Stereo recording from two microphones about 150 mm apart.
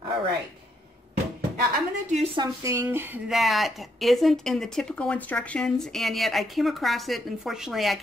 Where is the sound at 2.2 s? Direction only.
35° right (ahead or behind).